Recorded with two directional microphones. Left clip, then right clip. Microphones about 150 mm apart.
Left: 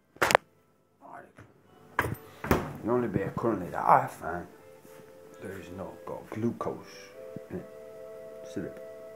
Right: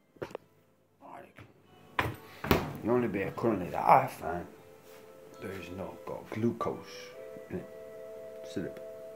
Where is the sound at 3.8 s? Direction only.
20° right (ahead or behind).